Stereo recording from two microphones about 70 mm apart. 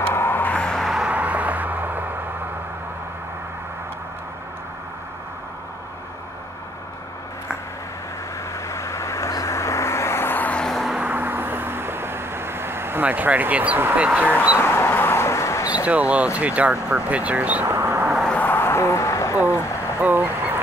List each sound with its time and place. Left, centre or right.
0.1 s vehicle: left
0.7 s a sound: centre
1.0 s a sound: right
8.6 s vehicle: left
10.5 s vehicle: centre
11.0 s vehicle: right
13.0 s speech: right
13.9 s speech: centre
14.6 s a sound: left
15.8 s speech: centre
17.7 s a sound: right
18.3 s vehicle: left
20.0 s goose: right